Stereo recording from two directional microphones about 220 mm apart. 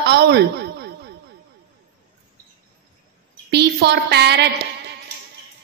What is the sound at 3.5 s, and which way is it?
A woman's voice, 50° right (ahead or behind).